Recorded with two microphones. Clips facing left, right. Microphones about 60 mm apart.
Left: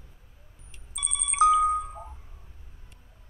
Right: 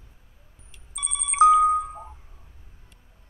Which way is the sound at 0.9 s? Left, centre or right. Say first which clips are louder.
Right 3 dB; right.